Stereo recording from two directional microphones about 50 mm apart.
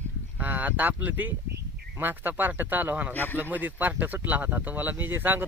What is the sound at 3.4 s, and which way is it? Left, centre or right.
Speech, right.